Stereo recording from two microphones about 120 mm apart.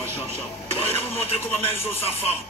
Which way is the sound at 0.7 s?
55° left (ahead or behind).